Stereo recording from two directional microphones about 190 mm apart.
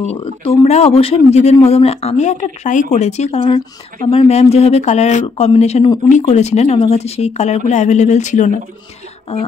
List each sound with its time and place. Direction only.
0.1 s speech: 30° left (ahead or behind)